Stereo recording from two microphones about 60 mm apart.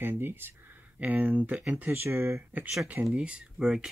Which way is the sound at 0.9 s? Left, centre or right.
Right.